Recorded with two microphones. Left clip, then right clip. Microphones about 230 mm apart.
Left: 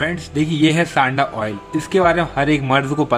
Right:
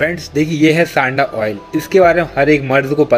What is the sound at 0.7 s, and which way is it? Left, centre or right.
Speech, left.